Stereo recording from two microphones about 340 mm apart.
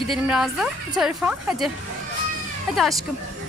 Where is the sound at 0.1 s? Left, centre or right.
Centre.